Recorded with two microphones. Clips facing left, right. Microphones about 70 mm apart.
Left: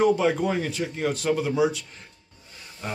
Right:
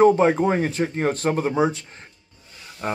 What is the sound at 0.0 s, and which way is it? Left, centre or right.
Speech, right.